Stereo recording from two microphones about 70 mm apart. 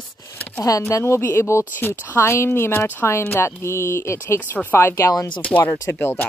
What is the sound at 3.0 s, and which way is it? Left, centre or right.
Speech, left.